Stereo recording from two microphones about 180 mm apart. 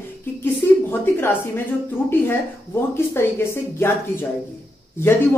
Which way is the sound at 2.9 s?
15° left (ahead or behind).